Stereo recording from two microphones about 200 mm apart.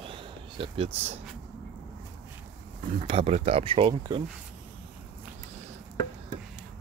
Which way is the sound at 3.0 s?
30° right (ahead or behind).